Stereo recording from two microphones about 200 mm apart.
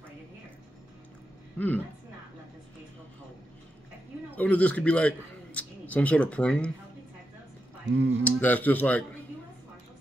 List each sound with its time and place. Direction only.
1.6 s speech: 10° left (ahead or behind)
4.4 s a man's voice: 5° left (ahead or behind)
7.8 s speech: 60° right (ahead or behind)
8.2 s speech: 10° left (ahead or behind)